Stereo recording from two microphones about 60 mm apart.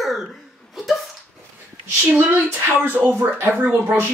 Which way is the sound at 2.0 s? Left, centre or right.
Right.